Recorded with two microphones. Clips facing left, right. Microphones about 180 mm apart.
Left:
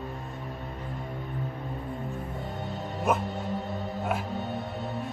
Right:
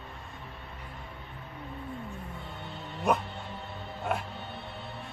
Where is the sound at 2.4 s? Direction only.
40° left (ahead or behind).